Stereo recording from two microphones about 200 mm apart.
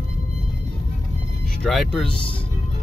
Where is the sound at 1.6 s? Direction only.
Centre (ahead or behind).